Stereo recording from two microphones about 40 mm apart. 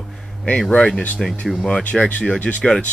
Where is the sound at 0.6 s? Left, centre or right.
Left.